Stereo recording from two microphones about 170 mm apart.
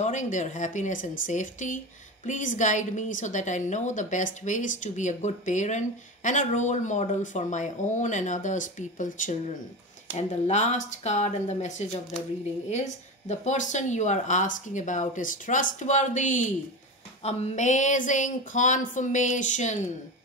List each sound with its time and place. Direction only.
0.0 s a woman's voice: 45° left (ahead or behind)